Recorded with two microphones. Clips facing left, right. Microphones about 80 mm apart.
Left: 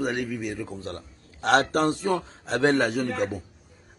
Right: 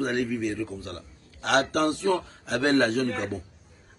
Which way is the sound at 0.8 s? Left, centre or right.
Left.